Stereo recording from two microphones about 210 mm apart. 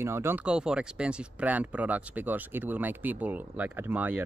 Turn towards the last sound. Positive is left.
turn(degrees=-10)  # may be behind; listen again after turning